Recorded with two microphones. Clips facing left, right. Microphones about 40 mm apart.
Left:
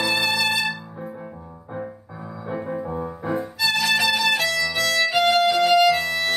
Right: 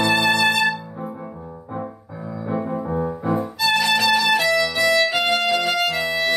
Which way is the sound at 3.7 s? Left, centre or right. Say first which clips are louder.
Right 3 dB; centre.